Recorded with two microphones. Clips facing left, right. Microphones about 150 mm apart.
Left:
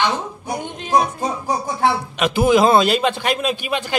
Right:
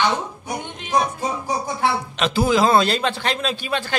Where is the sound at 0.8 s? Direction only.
35° left (ahead or behind).